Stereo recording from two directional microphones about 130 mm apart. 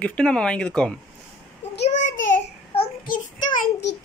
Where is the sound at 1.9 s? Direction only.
70° left (ahead or behind).